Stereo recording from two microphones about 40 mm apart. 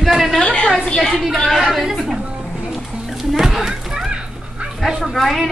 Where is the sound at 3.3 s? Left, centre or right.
Centre.